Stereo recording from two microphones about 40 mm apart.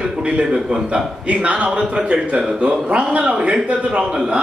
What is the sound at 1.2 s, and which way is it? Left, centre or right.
A man's voice, right.